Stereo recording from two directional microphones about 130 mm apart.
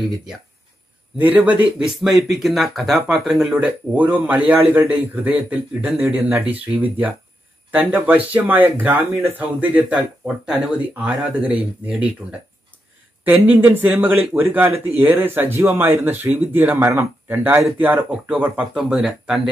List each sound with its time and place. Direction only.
1.1 s speech: 10° right (ahead or behind)
6.4 s speech: 45° right (ahead or behind)
6.8 s speech: 15° right (ahead or behind)
13.5 s speech: 15° right (ahead or behind)